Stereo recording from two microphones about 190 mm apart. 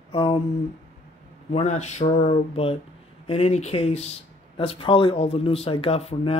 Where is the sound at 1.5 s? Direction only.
35° left (ahead or behind).